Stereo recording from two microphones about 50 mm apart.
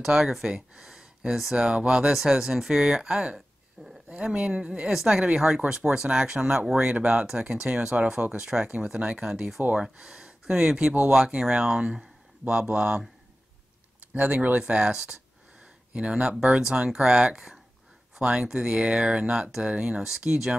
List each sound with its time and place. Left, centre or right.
0.0 s speech: centre
14.1 s speech: right
14.6 s speech: centre
20.0 s speech: centre